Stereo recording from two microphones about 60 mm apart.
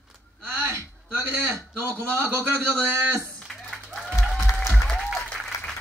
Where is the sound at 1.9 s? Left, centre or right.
Right.